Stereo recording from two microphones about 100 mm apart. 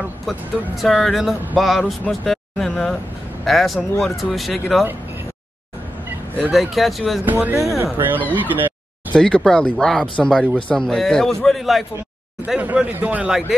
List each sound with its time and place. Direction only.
0.3 s speech: centre (ahead or behind)
6.0 s a sound: 15° right (ahead or behind)
6.5 s speech: centre (ahead or behind)
7.2 s speech: 20° right (ahead or behind)
7.5 s speech: 30° right (ahead or behind)
9.1 s speech: 10° left (ahead or behind)
12.5 s speech: 15° right (ahead or behind)